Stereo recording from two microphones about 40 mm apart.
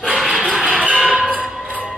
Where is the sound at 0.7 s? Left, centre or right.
Right.